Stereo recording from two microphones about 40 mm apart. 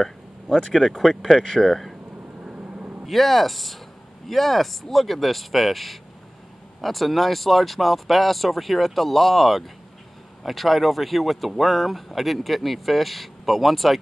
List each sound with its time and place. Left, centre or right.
0.9 s speech: centre
1.3 s speech: centre
2.6 s vehicle: right
3.1 s speech: centre